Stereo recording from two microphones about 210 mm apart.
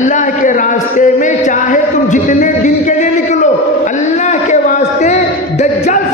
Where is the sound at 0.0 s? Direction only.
35° left (ahead or behind).